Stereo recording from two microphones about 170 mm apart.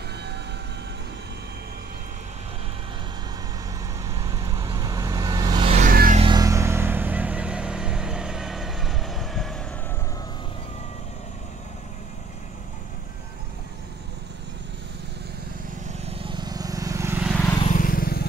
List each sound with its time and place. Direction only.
0.1 s train: 80° right
4.0 s vehicle: 20° right (ahead or behind)
5.8 s a sound: 55° right (ahead or behind)
6.1 s vehicle: 25° right (ahead or behind); by 9.6 s centre (ahead or behind)
15.9 s vehicle: 35° right (ahead or behind); by 17.2 s 15° right (ahead or behind)
17.6 s vehicle: 55° left (ahead or behind)